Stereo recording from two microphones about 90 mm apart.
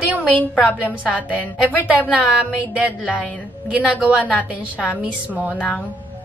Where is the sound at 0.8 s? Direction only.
15° right (ahead or behind).